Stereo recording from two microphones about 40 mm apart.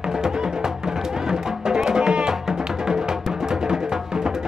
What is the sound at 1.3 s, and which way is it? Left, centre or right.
Music, centre.